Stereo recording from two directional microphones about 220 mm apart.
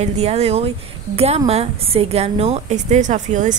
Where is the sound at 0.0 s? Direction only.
30° right (ahead or behind).